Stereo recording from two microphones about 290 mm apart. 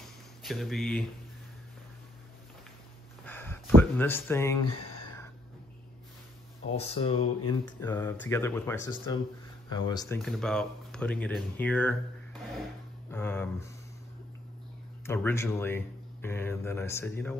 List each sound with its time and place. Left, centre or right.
0.4 s speech: centre
3.3 s speech: centre
6.8 s speech: centre
13.1 s speech: centre
15.0 s speech: centre